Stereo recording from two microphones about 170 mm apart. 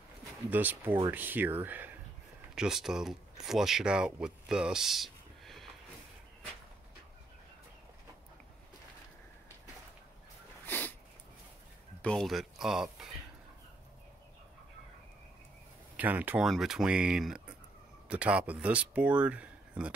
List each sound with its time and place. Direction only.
0.5 s speech: 10° right (ahead or behind)
10.7 s a sound: 10° left (ahead or behind)
12.0 s speech: 5° left (ahead or behind)
16.0 s speech: 10° right (ahead or behind)